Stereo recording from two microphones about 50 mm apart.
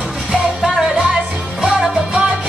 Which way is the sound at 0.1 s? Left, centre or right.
Centre.